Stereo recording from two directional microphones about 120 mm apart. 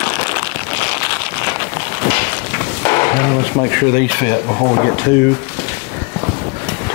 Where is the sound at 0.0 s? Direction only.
20° left (ahead or behind).